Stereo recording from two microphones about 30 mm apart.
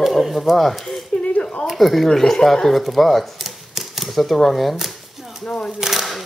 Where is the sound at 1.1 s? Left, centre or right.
Left.